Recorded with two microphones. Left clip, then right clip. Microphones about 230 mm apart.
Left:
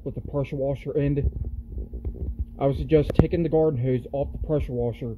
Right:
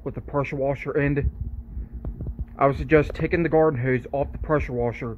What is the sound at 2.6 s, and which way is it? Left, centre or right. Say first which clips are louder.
A man's voice: right 3 dB; right.